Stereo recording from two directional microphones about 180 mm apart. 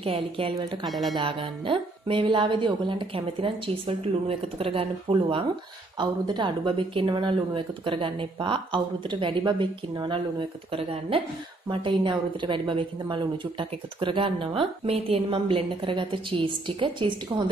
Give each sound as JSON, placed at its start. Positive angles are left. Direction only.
{"t": 0.0, "sound": "a woman's voice", "side_deg": -30}
{"t": 0.8, "sound": "speech", "side_deg": 0}
{"t": 1.1, "sound": "a woman's voice", "side_deg": -30}